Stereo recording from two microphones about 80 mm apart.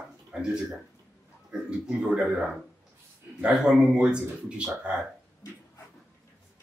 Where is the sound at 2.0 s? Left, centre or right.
Centre.